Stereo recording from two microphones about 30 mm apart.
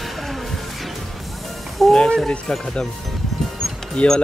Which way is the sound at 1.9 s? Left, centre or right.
Left.